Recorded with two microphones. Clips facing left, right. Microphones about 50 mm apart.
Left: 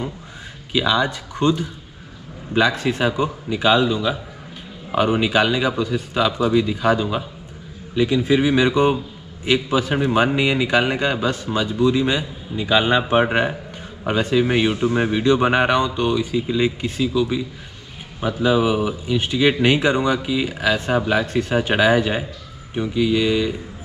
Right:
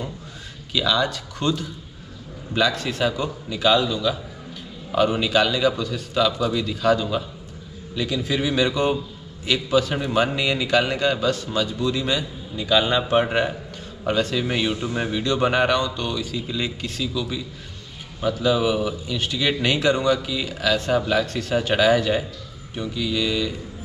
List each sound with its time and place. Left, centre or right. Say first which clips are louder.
0.7 s a man's voice: left 3 dB; centre